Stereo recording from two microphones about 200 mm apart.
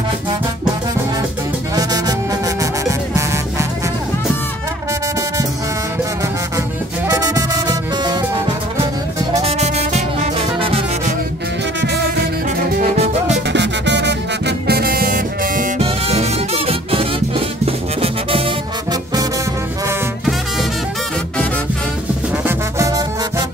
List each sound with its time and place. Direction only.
1.8 s music: 20° right (ahead or behind)
7.2 s music: 15° right (ahead or behind)
9.4 s music: 35° right (ahead or behind)
12.9 s music: 30° right (ahead or behind)
13.5 s music: 60° right (ahead or behind); by 15.7 s 45° right (ahead or behind)
15.8 s music: 30° right (ahead or behind)
22.4 s music: 15° right (ahead or behind)